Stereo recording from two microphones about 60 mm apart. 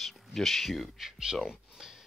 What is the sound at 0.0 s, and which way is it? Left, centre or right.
Speech, centre.